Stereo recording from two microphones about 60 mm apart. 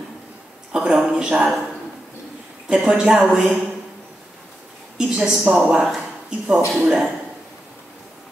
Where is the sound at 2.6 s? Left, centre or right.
Centre.